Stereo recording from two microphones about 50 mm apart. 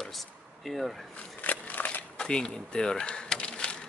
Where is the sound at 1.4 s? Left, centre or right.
Left.